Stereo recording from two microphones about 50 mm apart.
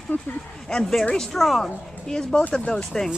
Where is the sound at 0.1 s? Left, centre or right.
Left.